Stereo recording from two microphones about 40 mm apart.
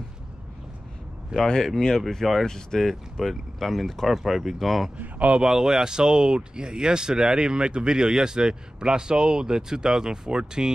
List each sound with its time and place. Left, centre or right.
1.8 s speech: centre
4.1 s speech: centre
4.9 s a man's voice: right
5.4 s speech: centre